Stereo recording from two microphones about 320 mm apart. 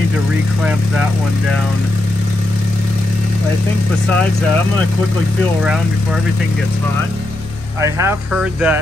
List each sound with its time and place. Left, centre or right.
7.8 s speech: centre